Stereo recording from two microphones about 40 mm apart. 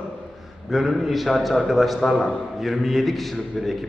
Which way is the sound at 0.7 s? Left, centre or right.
Centre.